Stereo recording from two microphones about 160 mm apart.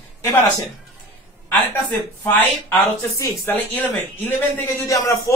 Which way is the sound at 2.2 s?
10° left (ahead or behind).